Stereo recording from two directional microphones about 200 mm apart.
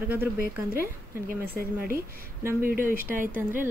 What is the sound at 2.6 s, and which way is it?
Speech, 45° right (ahead or behind).